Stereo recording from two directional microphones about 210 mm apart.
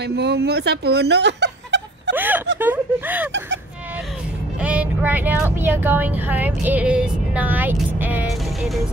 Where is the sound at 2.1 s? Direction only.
10° right (ahead or behind).